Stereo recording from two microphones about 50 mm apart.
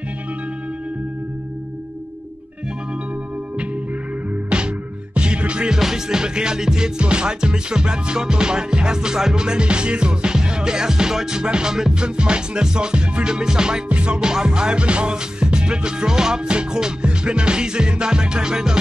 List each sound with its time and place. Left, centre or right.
5.1 s music: right
5.8 s music: centre